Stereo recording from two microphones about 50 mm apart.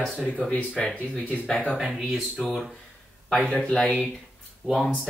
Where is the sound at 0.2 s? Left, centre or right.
Left.